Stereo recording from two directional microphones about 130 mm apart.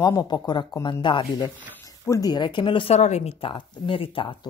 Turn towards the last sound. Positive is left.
turn(degrees=40)  # may be behind; listen again after turning